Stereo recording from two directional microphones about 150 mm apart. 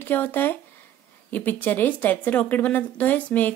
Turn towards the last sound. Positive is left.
turn(degrees=10)  # may be behind; listen again after turning